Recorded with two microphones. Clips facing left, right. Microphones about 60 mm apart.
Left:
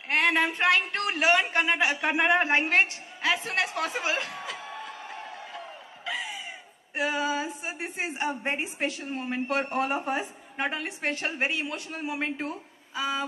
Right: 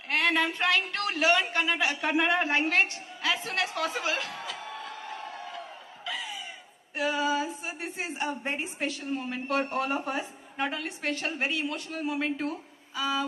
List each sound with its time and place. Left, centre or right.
0.1 s a woman's voice: left
6.0 s chicken: left
7.0 s a woman's voice: left